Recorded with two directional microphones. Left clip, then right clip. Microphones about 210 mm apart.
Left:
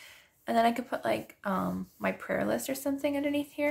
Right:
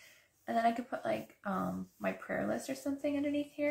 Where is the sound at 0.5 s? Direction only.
50° left (ahead or behind).